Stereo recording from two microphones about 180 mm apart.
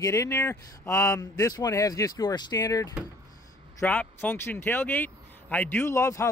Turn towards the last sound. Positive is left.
turn(degrees=15)  # may be behind; listen again after turning